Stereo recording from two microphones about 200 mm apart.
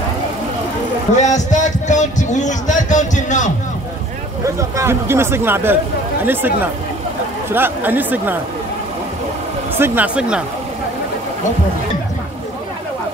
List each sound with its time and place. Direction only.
1.2 s a sound: 35° left (ahead or behind)
4.6 s speech: 15° right (ahead or behind)
9.8 s speech: 10° right (ahead or behind)